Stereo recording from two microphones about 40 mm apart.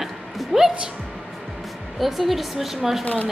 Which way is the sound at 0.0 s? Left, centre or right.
Centre.